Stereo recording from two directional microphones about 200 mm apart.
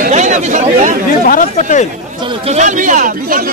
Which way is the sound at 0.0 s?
35° right (ahead or behind).